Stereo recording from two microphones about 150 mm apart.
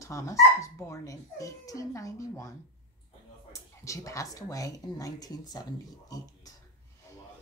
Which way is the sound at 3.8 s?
20° left (ahead or behind).